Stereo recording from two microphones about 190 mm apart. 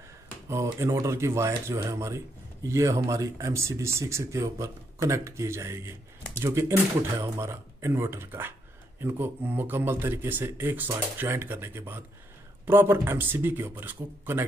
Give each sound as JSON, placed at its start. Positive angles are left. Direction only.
{"t": 0.5, "sound": "speech", "side_deg": -15}